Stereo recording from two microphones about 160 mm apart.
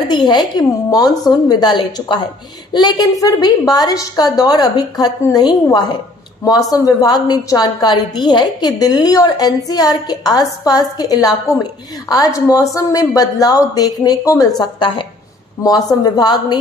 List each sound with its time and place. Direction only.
0.1 s a woman's voice: 30° left (ahead or behind)